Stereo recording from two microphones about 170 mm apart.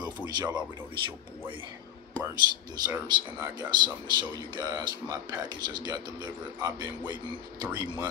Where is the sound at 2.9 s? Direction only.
25° right (ahead or behind).